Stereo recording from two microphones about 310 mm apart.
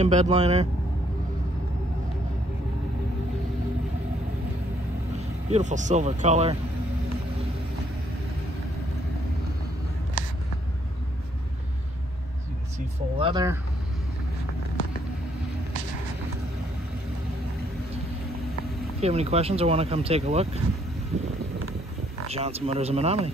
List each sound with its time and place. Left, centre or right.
0.0 s speech: right
5.5 s speech: right
13.2 s speech: centre
18.9 s speech: centre
22.3 s speech: centre